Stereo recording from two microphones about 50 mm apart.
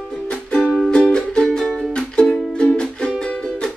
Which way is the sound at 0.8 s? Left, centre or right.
Centre.